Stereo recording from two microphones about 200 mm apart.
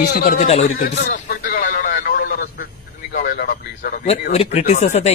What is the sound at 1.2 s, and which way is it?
Vehicle, 45° left (ahead or behind).